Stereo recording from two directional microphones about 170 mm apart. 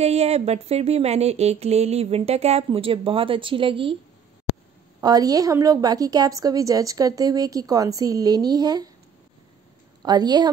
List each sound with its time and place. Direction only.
0.0 s speech: 40° right (ahead or behind)
5.0 s a woman's voice: 20° right (ahead or behind)
10.0 s a woman's voice: 25° right (ahead or behind)